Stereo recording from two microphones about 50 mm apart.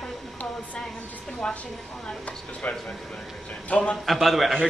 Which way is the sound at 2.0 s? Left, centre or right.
Left.